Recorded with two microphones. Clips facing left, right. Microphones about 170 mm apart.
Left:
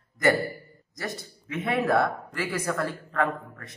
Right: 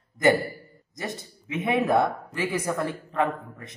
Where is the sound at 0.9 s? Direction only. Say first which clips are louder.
Right 1 dB; 20° right (ahead or behind).